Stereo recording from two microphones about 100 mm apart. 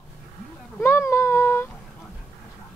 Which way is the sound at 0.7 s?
25° left (ahead or behind).